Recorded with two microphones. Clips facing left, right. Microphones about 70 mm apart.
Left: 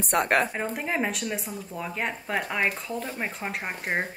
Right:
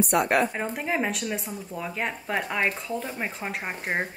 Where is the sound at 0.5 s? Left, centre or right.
Centre.